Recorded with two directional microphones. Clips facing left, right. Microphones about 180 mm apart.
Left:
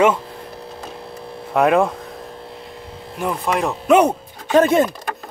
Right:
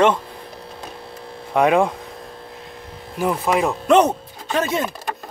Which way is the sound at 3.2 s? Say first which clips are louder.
Right 2 dB; centre (ahead or behind).